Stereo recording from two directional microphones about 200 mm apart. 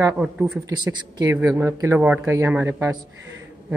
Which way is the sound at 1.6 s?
15° right (ahead or behind).